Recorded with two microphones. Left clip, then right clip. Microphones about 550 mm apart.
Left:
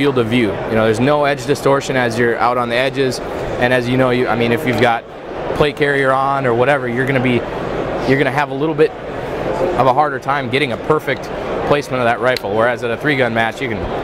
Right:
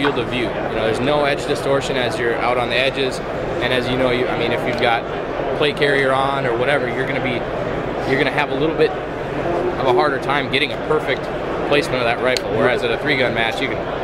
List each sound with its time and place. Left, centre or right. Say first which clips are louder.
0.0 s speech: left 4 dB; left
8.2 s speech: left 2 dB; left